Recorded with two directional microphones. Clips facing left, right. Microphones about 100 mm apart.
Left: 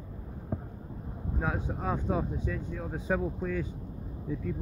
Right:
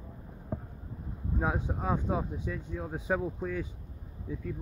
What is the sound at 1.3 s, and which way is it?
Speech, 20° right (ahead or behind).